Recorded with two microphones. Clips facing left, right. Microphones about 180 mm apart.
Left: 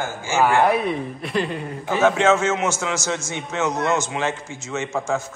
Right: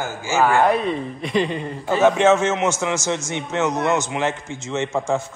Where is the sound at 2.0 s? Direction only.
20° right (ahead or behind).